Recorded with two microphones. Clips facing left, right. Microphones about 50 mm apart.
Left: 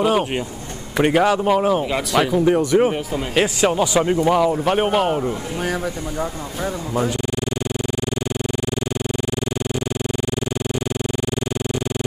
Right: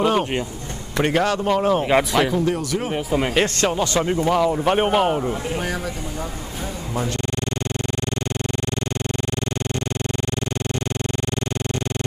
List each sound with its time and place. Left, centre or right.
0.0 s speech: centre
2.4 s speech: left
3.3 s speech: centre